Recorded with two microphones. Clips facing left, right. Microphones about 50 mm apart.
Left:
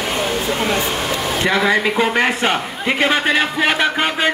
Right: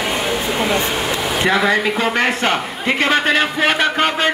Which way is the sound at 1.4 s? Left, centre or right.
Centre.